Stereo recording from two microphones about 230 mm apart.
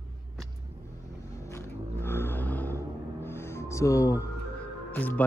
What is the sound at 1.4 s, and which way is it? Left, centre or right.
Vehicle, centre.